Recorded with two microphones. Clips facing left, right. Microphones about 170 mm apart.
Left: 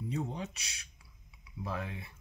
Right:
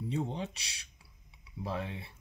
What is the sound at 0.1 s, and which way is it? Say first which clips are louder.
Speech: right 2 dB; 30° right (ahead or behind).